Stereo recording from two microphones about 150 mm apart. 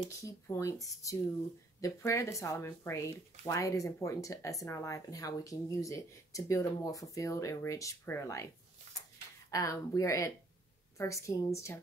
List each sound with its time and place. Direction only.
0.1 s speech: 20° left (ahead or behind)
9.5 s speech: 20° left (ahead or behind)